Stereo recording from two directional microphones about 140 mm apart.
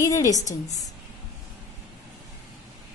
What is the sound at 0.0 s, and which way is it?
Speech, 20° left (ahead or behind).